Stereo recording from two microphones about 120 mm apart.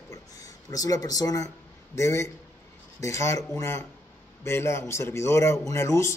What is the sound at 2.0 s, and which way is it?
A man's voice, 25° left (ahead or behind).